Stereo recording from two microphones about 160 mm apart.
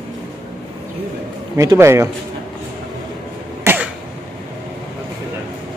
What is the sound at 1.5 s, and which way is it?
Speech, 20° right (ahead or behind).